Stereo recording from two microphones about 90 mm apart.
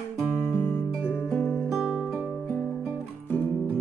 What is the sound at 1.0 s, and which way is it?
Music, 25° left (ahead or behind).